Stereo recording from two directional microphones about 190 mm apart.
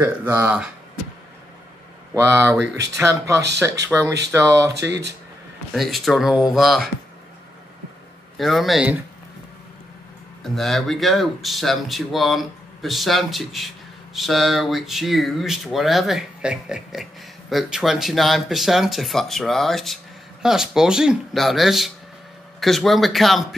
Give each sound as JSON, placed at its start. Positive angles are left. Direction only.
{"t": 0.0, "sound": "speech", "side_deg": -10}
{"t": 3.0, "sound": "speech", "side_deg": -15}
{"t": 3.9, "sound": "speech", "side_deg": 0}
{"t": 4.3, "sound": "speech", "side_deg": -15}
{"t": 4.8, "sound": "speech", "side_deg": -60}
{"t": 5.7, "sound": "speech", "side_deg": 0}
{"t": 8.4, "sound": "speech", "side_deg": 0}
{"t": 10.4, "sound": "speech", "side_deg": 0}